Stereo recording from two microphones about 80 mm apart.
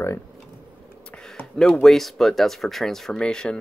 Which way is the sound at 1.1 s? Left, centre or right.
Centre.